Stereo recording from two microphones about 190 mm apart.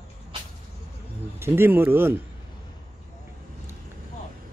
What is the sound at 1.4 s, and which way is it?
Speech, 10° right (ahead or behind).